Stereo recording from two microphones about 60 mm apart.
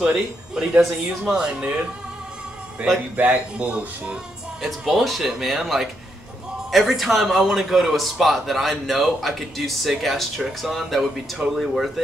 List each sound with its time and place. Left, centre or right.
0.0 s speech: centre
3.2 s speech: right
4.6 s a man's voice: centre